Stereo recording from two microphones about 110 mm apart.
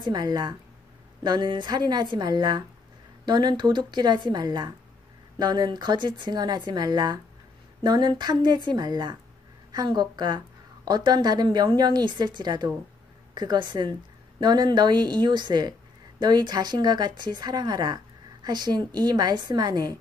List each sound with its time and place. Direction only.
0.1 s speech: 40° right (ahead or behind)